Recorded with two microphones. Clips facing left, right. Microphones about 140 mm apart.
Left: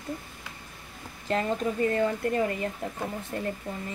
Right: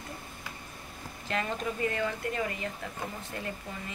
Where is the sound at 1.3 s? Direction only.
35° left (ahead or behind).